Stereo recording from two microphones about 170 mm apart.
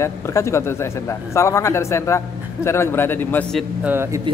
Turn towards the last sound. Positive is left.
turn(degrees=-15)  # may be behind; listen again after turning